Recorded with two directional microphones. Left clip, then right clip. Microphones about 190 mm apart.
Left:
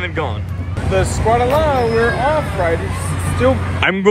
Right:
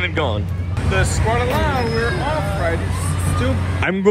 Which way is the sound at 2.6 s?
45° left (ahead or behind).